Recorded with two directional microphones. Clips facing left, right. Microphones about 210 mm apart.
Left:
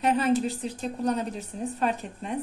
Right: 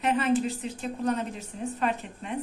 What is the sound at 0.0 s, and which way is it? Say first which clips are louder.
Speech: left 1 dB; 35° left (ahead or behind).